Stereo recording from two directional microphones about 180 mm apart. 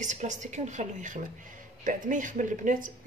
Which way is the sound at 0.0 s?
40° right (ahead or behind).